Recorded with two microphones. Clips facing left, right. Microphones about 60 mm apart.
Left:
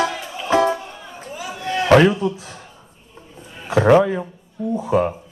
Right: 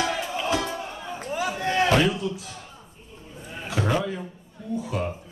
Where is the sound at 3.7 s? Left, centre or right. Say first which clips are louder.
Left 12 dB; left.